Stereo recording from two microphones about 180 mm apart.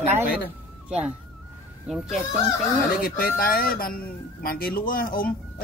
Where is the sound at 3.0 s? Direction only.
55° left (ahead or behind).